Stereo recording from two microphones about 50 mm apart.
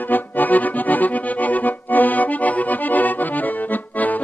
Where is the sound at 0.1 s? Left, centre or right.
Left.